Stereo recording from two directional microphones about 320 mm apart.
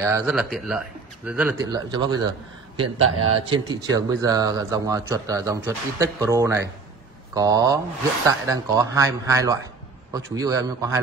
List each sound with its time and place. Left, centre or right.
0.0 s a man's voice: centre
2.8 s a man's voice: right
3.4 s a man's voice: centre